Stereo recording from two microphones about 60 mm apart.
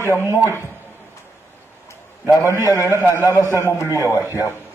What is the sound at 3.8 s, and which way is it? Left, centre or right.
Speech, left.